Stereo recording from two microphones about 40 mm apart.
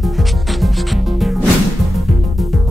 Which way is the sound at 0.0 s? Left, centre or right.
Centre.